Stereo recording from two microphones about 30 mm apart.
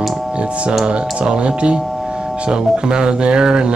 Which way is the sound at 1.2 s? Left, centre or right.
Right.